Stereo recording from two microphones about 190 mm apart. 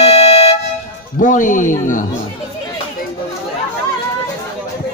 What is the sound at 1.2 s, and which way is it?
Speech, 45° left (ahead or behind).